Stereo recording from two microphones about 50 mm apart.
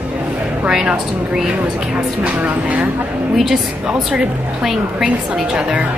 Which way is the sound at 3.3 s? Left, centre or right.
Centre.